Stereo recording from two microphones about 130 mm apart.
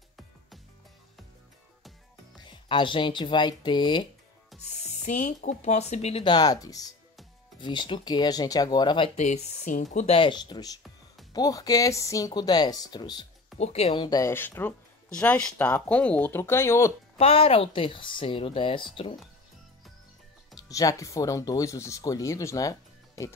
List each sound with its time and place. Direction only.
2.4 s speech: 40° left (ahead or behind)
4.6 s speech: 60° left (ahead or behind)
6.2 s speech: 30° left (ahead or behind)
9.2 s speech: 65° left (ahead or behind)
9.9 s speech: 45° left (ahead or behind)
13.6 s a woman's voice: 55° left (ahead or behind)
13.9 s speech: 35° left (ahead or behind)
14.2 s speech: 20° left (ahead or behind)
17.2 s speech: 45° left (ahead or behind)
20.5 s speech: 30° left (ahead or behind)